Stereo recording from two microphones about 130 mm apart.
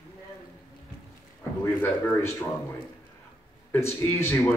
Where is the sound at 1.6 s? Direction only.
15° left (ahead or behind).